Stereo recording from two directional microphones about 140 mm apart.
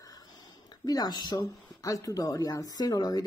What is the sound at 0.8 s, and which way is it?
Speech, 30° left (ahead or behind).